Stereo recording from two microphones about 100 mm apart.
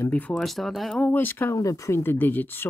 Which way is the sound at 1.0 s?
20° left (ahead or behind).